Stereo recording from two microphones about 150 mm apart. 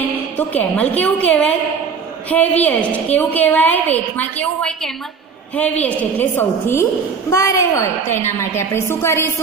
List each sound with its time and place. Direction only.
0.4 s a woman's voice: 10° left (ahead or behind)